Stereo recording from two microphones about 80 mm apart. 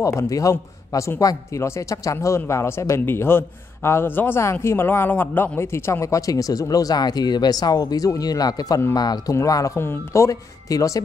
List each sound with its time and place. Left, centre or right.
0.0 s a man's voice: left
9.3 s speech: left